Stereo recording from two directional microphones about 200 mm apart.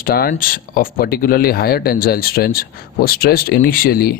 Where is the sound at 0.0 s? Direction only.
45° left (ahead or behind).